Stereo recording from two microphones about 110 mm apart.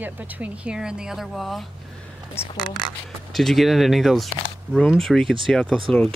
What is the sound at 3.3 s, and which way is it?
Speech, centre (ahead or behind).